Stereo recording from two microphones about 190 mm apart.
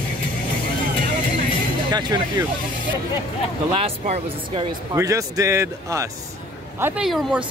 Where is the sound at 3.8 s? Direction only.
30° right (ahead or behind).